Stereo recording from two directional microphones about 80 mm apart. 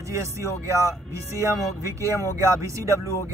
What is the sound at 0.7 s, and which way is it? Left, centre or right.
Speech, right.